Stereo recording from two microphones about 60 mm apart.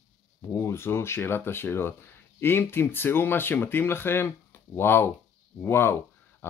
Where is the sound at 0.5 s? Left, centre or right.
Left.